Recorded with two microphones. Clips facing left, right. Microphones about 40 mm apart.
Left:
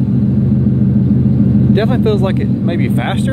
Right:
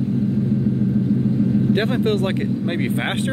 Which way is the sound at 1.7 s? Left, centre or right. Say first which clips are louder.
Left 6 dB; centre.